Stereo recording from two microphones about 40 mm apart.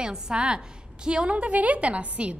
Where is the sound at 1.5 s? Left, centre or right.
Right.